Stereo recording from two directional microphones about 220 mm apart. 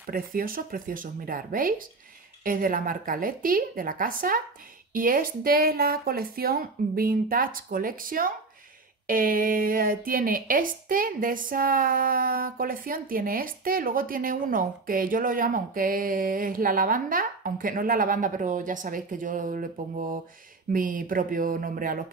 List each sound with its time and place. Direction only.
0.0 s a woman's voice: 40° right (ahead or behind)